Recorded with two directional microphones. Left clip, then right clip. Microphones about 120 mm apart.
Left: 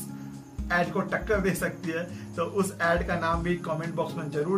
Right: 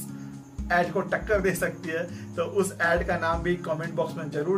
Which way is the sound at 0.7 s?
20° right (ahead or behind).